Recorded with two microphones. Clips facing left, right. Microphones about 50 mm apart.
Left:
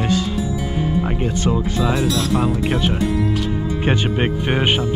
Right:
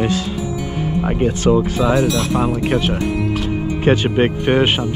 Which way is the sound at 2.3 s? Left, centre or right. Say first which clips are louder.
Right 2 dB; right.